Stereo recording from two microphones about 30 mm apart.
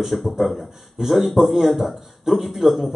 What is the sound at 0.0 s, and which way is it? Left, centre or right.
A man's voice, centre.